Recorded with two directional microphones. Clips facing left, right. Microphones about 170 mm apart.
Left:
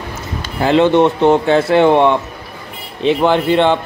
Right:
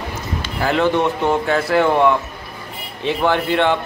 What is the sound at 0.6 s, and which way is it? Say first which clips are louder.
Speech: left 6 dB; 25° left (ahead or behind).